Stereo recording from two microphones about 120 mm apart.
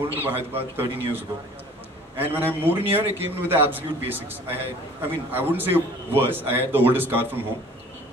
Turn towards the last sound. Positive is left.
turn(degrees=-15)  # may be behind; listen again after turning